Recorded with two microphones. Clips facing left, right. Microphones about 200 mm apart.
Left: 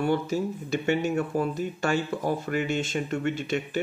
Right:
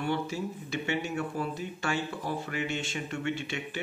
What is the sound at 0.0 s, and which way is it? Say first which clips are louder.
Speech: left 6 dB; 45° left (ahead or behind).